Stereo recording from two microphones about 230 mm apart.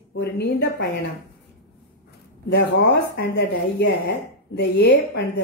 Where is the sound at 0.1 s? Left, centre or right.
Left.